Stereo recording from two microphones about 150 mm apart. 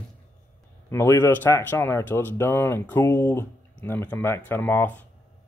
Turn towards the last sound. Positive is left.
turn(degrees=10)  # may be behind; listen again after turning